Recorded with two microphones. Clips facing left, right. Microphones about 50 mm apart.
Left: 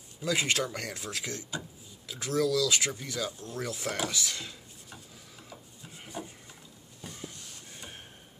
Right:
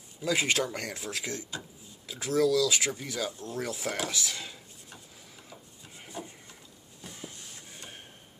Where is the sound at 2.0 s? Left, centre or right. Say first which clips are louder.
Right 3 dB; right.